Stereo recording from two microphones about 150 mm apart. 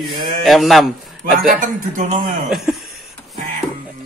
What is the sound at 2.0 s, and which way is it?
Speech, 60° right (ahead or behind).